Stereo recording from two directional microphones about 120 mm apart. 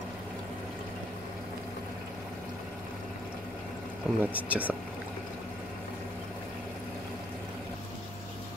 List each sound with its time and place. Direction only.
4.1 s speech: centre (ahead or behind)
4.4 s speech: 10° right (ahead or behind)